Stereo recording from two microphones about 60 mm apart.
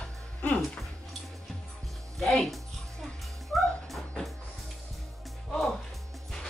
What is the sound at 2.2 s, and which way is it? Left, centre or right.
Speech, centre.